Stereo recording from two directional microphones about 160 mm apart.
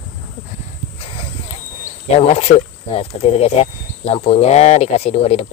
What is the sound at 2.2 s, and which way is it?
Speech, 40° left (ahead or behind).